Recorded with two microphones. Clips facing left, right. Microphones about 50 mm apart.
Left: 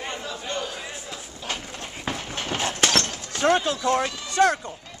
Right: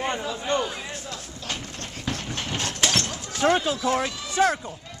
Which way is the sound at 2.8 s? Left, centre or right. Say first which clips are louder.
Left 2 dB; left.